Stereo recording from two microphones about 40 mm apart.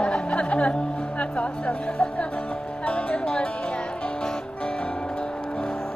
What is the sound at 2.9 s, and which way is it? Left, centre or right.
Music, left.